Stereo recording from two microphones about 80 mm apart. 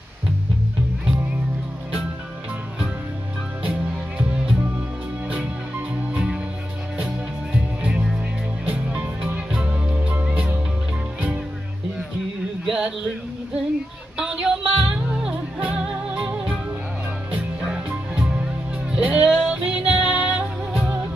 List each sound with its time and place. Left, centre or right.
7.5 s music: centre
12.6 s a sound: centre
14.1 s music: centre